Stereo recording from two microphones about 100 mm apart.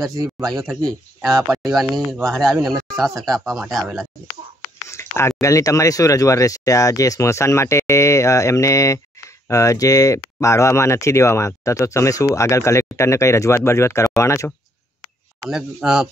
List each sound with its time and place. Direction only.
0.2 s a man's voice: 40° right (ahead or behind)
0.6 s speech: centre (ahead or behind)
4.8 s a sound: 25° left (ahead or behind)
5.4 s speech: 30° left (ahead or behind)
15.5 s speech: 5° right (ahead or behind)